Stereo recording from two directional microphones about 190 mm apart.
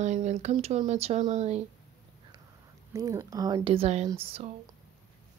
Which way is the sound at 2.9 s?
15° right (ahead or behind).